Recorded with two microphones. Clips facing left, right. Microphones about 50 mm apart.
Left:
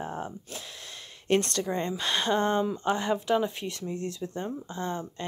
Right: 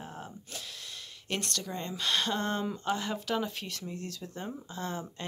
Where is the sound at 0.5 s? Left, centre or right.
Left.